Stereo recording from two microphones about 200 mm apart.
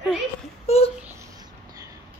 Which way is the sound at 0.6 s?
30° left (ahead or behind).